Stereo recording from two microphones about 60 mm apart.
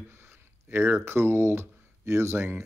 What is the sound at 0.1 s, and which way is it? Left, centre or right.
Speech, right.